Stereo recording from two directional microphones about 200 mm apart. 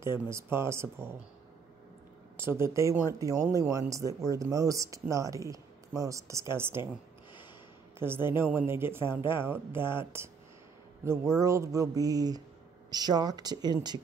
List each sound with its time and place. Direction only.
0.0 s speech: 15° right (ahead or behind)
2.3 s speech: 10° right (ahead or behind)
8.0 s speech: 10° right (ahead or behind)